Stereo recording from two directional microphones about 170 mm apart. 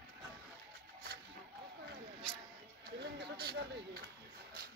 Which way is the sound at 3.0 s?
70° right (ahead or behind).